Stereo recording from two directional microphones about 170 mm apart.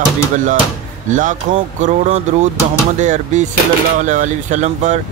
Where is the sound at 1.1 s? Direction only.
45° right (ahead or behind).